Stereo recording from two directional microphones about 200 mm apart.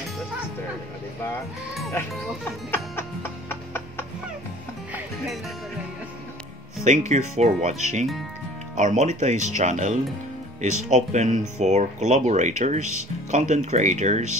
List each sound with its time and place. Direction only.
2.7 s music: 10° left (ahead or behind)
6.8 s speech: 35° right (ahead or behind)